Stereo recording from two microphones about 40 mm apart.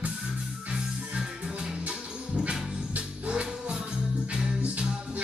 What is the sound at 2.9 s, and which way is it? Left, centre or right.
Music, right.